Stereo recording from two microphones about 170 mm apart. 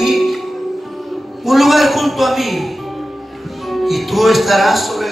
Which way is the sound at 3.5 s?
Centre (ahead or behind).